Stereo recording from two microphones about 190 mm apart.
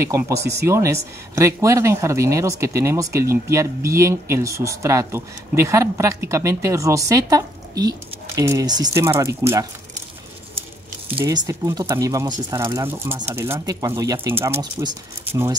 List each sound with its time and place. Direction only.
0.0 s speech: 15° right (ahead or behind)
11.2 s speech: 15° right (ahead or behind)